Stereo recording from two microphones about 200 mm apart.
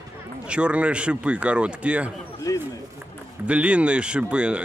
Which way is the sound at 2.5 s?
15° left (ahead or behind).